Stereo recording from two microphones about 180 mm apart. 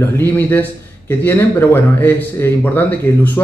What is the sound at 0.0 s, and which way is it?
A man's voice, 10° left (ahead or behind).